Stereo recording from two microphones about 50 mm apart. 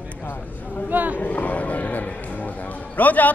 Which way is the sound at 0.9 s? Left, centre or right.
Right.